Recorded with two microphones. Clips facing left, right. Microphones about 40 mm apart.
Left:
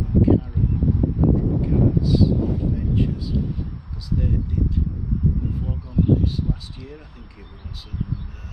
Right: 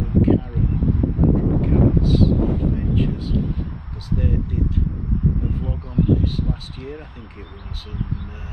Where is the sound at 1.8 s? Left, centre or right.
Right.